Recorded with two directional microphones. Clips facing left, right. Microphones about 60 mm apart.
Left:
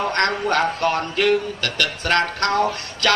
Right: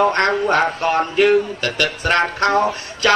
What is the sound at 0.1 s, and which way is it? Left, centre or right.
A woman's voice, centre.